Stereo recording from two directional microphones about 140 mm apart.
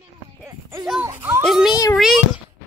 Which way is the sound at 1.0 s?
15° right (ahead or behind).